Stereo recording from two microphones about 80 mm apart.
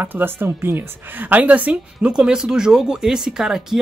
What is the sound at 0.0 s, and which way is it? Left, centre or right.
Speech, right.